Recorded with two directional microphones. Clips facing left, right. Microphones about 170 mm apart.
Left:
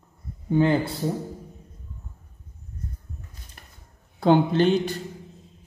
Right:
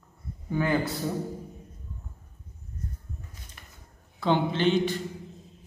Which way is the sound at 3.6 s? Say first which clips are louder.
Left 2 dB; 40° left (ahead or behind).